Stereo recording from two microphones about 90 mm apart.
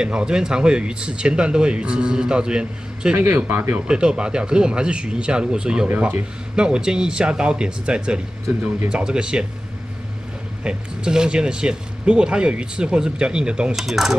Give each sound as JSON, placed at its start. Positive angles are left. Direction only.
{"t": 0.0, "sound": "speech", "side_deg": -10}
{"t": 3.2, "sound": "speech", "side_deg": -20}
{"t": 3.8, "sound": "speech", "side_deg": -10}
{"t": 10.6, "sound": "speech", "side_deg": -10}